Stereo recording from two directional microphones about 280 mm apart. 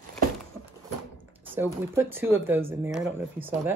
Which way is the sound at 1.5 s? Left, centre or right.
Centre.